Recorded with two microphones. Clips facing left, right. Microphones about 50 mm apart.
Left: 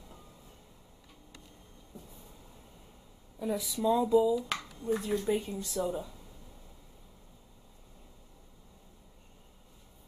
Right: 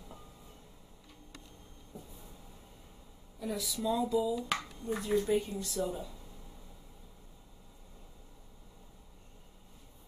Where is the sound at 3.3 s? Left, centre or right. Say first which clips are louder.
Left 4 dB; centre.